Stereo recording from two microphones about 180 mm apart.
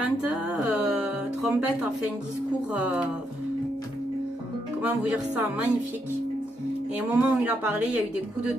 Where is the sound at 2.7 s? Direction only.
5° right (ahead or behind).